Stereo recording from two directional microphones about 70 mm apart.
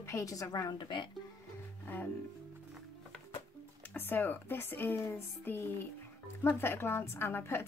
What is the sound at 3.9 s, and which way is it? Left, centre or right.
A woman's voice, left.